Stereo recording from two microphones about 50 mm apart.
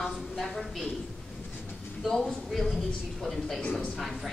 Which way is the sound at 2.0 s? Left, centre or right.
Centre.